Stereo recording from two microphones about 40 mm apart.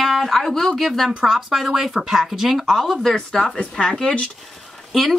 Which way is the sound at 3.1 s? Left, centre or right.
Centre.